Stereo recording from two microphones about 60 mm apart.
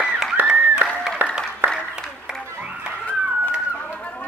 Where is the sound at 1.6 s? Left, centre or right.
Right.